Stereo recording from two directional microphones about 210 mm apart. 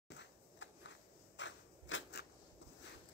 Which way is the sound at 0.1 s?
60° left (ahead or behind).